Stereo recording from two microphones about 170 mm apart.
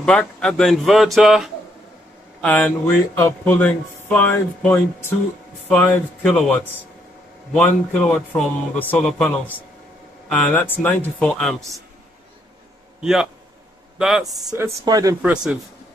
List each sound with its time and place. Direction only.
0.0 s speech: 5° left (ahead or behind)
10.5 s speech: 10° left (ahead or behind)
13.0 s speech: 5° right (ahead or behind)
14.2 s speech: 20° right (ahead or behind)
15.3 s speech: 5° right (ahead or behind)